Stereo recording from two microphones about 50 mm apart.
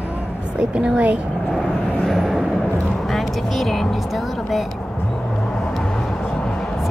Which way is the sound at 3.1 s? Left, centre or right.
Centre.